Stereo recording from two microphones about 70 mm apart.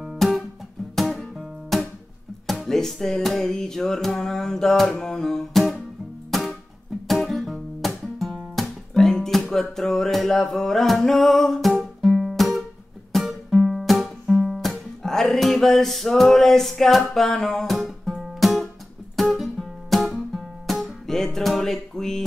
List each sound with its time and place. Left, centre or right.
0.2 s music: centre
1.7 s guitar: centre
2.4 s music: centre